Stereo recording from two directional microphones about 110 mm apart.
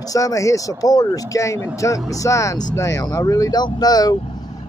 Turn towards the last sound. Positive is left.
turn(degrees=35)  # may be behind; listen again after turning